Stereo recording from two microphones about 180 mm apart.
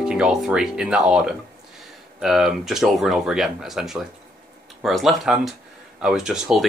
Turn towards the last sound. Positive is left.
turn(degrees=-5)  # may be behind; listen again after turning